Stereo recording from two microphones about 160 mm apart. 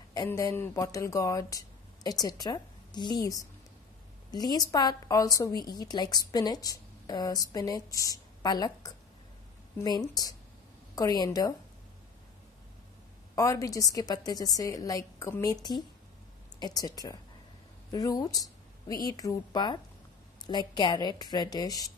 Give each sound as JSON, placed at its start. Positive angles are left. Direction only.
{"t": 0.3, "sound": "a woman's voice", "side_deg": 20}
{"t": 13.3, "sound": "a woman's voice", "side_deg": 20}